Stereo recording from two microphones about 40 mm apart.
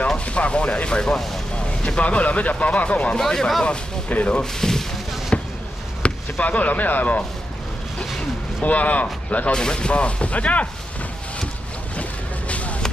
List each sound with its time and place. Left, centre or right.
0.2 s speech: left
1.9 s speech: left
3.2 s speech: centre
5.3 s basketball bounce: left
6.4 s speech: left
8.6 s speech: left
9.5 s speech: left
12.0 s boat: left